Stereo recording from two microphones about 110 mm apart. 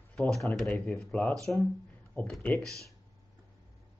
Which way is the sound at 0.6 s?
10° left (ahead or behind).